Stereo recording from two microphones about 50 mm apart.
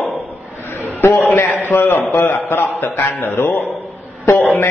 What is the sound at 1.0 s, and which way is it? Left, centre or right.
A man's voice, left.